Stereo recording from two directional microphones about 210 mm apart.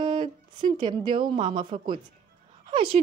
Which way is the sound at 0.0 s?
20° right (ahead or behind).